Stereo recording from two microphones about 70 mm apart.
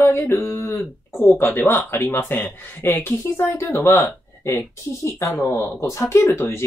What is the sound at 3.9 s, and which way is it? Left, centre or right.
Speech, left.